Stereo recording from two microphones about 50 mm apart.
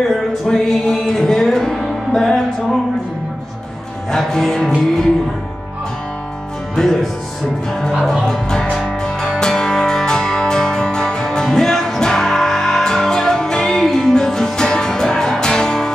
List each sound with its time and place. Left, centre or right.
0.5 s music: centre
4.3 s music: centre
6.7 s music: centre
8.3 s music: centre